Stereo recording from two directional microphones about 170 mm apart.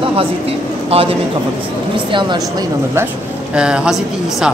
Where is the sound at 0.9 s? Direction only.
35° right (ahead or behind).